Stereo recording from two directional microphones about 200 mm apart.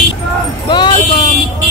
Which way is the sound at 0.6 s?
20° left (ahead or behind).